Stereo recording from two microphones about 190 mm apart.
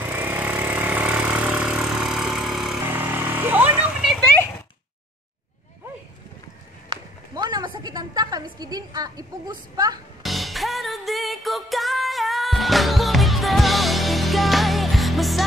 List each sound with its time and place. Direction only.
0.0 s vehicle: 10° right (ahead or behind)
6.9 s a sound: 20° right (ahead or behind)
10.2 s music: centre (ahead or behind)